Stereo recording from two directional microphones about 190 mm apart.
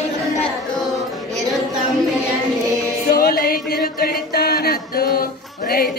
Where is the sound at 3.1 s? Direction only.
50° left (ahead or behind).